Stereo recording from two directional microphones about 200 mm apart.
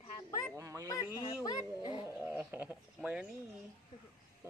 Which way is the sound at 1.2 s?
25° left (ahead or behind).